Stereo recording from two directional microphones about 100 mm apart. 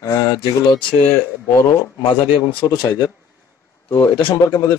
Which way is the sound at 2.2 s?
55° left (ahead or behind).